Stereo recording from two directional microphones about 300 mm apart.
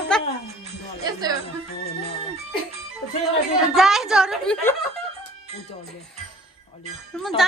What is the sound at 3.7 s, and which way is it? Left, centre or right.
A woman's voice, centre.